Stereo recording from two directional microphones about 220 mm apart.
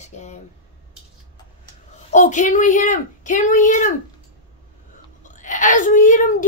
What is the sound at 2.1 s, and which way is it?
Speech, 35° left (ahead or behind).